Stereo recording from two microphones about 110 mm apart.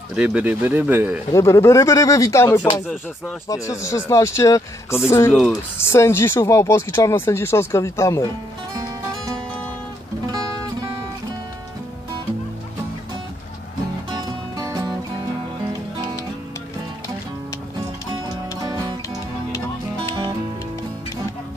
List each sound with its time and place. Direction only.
0.1 s a man's voice: 10° right (ahead or behind)
1.3 s speech: 25° left (ahead or behind)
5.3 s speech: centre (ahead or behind)
5.8 s speech: 25° left (ahead or behind)
8.7 s music: 35° right (ahead or behind)
14.1 s music: 35° right (ahead or behind)
18.6 s music: 35° right (ahead or behind)